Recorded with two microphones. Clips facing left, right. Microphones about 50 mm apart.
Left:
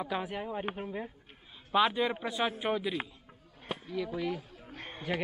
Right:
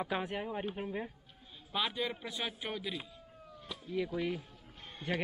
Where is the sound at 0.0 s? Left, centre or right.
Centre.